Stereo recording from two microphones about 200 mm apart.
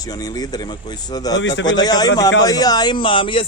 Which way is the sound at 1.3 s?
65° left (ahead or behind).